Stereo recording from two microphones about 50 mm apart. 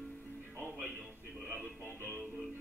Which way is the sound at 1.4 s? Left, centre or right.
Right.